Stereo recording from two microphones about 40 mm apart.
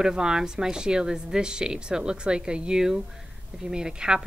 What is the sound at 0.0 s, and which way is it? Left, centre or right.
A woman's voice, centre.